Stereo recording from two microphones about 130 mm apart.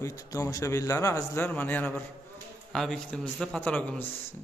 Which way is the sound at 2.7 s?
5° left (ahead or behind).